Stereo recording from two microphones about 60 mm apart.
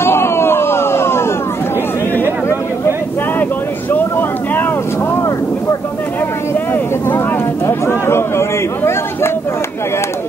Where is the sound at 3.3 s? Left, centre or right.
Left.